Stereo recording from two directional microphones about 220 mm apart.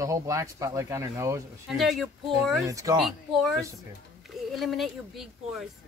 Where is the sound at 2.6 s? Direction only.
15° right (ahead or behind).